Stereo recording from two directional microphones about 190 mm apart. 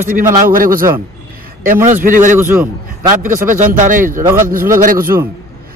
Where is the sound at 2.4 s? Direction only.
10° right (ahead or behind).